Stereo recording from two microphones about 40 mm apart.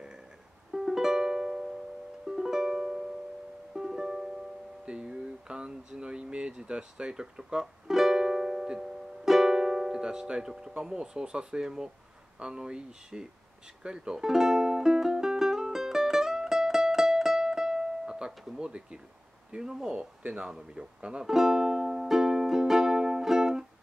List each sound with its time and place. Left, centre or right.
0.7 s music: centre
4.8 s a sound: right
10.8 s speech: centre
13.8 s music: centre
18.6 s speech: right
21.3 s music: centre